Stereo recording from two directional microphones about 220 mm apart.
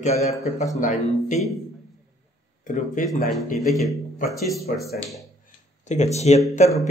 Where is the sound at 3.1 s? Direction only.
Centre (ahead or behind).